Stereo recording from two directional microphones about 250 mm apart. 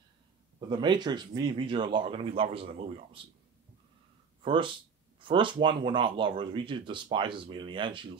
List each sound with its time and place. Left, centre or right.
0.6 s speech: centre
4.4 s speech: centre